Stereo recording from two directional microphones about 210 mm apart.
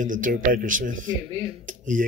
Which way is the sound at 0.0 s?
40° right (ahead or behind).